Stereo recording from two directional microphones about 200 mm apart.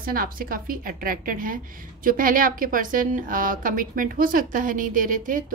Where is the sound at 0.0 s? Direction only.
45° right (ahead or behind).